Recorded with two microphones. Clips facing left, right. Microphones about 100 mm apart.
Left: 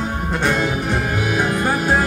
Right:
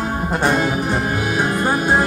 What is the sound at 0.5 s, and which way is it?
Music, 15° right (ahead or behind).